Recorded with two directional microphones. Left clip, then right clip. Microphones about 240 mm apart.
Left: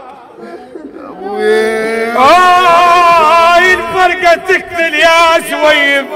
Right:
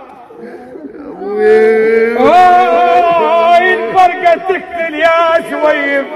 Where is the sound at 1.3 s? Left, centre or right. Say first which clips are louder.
Right 3 dB; left.